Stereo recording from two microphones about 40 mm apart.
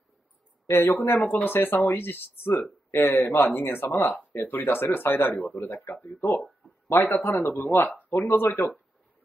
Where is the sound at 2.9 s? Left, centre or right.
Left.